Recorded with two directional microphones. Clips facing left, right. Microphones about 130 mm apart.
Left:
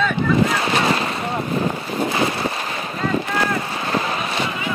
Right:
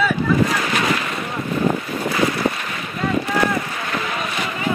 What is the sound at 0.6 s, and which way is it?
Boat, 30° left (ahead or behind).